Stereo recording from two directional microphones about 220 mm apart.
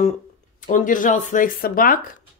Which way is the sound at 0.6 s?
35° left (ahead or behind).